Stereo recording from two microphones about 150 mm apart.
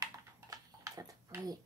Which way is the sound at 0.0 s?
25° right (ahead or behind).